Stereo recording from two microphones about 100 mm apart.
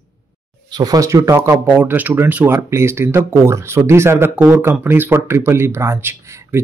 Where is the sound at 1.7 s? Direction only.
20° right (ahead or behind).